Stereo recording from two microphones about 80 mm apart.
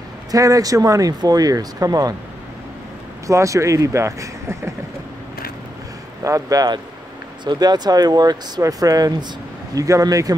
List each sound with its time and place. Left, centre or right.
0.3 s speech: right
3.3 s speech: right
6.2 s speech: right